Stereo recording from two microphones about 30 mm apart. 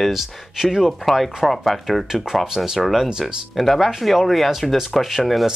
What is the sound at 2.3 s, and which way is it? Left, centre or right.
Speech, centre.